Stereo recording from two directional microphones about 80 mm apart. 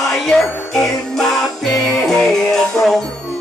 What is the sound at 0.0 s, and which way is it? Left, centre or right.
Music, centre.